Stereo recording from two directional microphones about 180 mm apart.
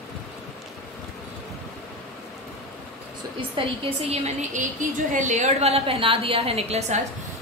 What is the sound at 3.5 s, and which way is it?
A woman's voice, 35° right (ahead or behind).